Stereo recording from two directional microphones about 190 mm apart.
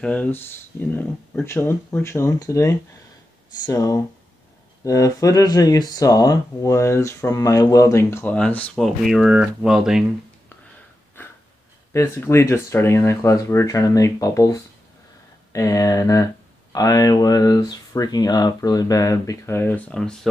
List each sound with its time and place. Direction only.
0.0 s speech: 10° left (ahead or behind)
11.9 s speech: 15° left (ahead or behind)